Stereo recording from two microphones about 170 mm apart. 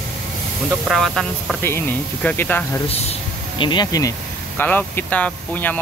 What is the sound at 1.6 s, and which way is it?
Speech, 15° left (ahead or behind).